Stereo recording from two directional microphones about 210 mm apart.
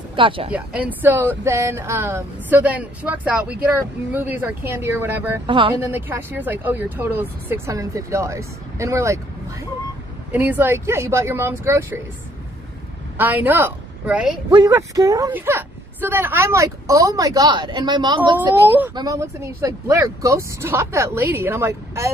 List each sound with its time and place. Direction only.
0.1 s speech: 25° right (ahead or behind)
0.5 s speech: 10° right (ahead or behind)
13.2 s a woman's voice: 10° right (ahead or behind)
14.5 s speech: 20° right (ahead or behind)